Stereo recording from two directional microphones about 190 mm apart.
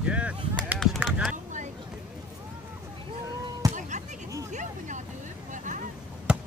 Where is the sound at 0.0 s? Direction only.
5° right (ahead or behind).